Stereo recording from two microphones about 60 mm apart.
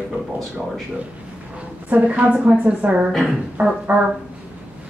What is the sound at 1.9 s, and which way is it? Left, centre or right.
A woman's voice, right.